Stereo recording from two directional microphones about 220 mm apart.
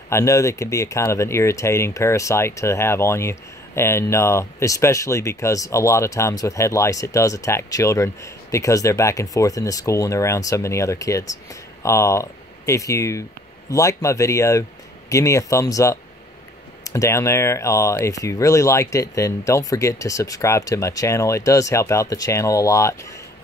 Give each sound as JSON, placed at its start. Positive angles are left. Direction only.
{"t": 0.1, "sound": "speech", "side_deg": 15}